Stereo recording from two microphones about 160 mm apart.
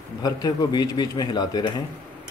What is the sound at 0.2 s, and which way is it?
Speech, 25° left (ahead or behind).